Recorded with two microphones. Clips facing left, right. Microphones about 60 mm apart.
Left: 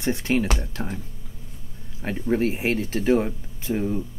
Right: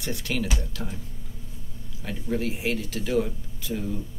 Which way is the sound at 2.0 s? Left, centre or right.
Left.